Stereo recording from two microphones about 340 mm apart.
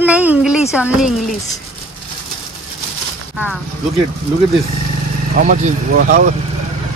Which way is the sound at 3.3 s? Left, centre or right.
Centre.